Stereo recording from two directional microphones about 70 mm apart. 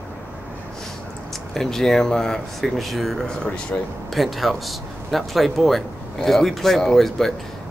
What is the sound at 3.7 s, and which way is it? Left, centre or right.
Speech, left.